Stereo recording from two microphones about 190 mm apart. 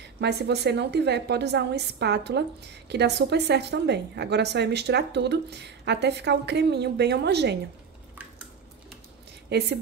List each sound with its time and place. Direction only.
0.2 s a woman's voice: 60° right (ahead or behind)
9.5 s a woman's voice: 60° right (ahead or behind)